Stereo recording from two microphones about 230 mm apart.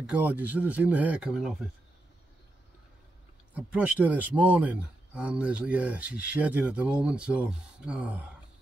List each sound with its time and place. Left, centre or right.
0.0 s speech: centre
3.5 s speech: centre